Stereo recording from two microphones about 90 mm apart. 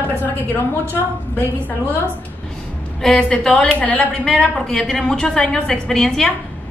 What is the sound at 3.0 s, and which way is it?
A woman's voice, 10° left (ahead or behind).